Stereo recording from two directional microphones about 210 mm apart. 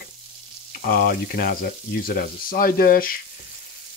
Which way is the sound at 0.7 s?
45° left (ahead or behind).